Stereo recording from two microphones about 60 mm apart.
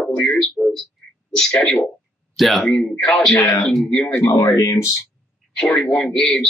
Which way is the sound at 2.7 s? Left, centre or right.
Centre.